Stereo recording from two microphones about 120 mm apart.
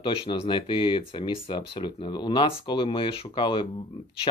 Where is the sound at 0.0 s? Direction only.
50° left (ahead or behind).